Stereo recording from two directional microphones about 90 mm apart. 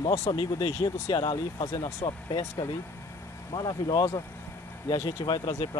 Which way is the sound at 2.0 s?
35° left (ahead or behind).